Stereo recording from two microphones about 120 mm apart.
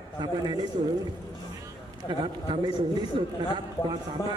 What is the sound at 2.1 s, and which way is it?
A man's voice, 40° right (ahead or behind).